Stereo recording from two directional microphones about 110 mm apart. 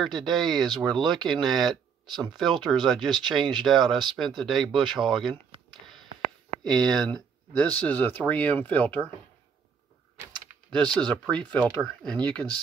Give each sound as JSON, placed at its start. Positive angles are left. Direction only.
{"t": 0.0, "sound": "speech", "side_deg": 0}
{"t": 6.7, "sound": "speech", "side_deg": 5}
{"t": 11.0, "sound": "speech", "side_deg": 10}